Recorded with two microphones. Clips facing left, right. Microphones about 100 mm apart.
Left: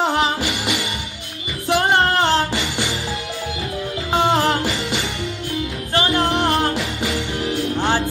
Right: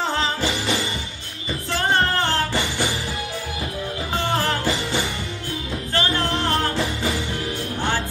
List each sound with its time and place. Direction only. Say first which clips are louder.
0.0 s music: left 4 dB; 15° left (ahead or behind)
1.7 s music: left 5 dB; 15° left (ahead or behind)
4.1 s music: left 6 dB; 20° left (ahead or behind)
5.9 s music: left 5 dB; 15° left (ahead or behind)